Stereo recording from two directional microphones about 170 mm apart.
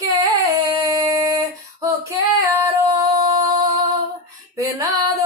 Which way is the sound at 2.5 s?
25° right (ahead or behind).